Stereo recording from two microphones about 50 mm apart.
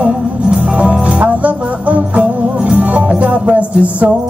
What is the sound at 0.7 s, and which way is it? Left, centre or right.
Music, right.